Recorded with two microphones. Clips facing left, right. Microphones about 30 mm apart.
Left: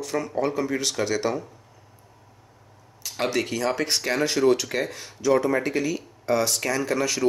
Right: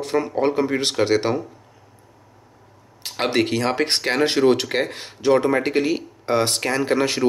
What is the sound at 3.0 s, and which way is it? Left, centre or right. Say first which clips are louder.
Speech: right 5 dB; right.